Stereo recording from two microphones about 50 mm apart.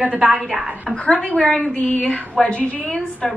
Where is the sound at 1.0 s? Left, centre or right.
Left.